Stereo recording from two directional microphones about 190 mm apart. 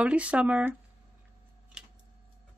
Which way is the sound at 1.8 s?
5° right (ahead or behind).